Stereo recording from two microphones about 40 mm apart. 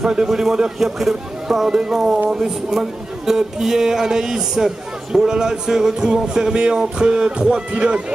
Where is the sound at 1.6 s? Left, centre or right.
Centre.